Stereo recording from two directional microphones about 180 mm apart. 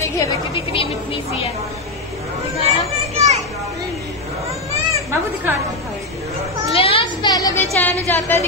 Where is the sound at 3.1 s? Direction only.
35° right (ahead or behind).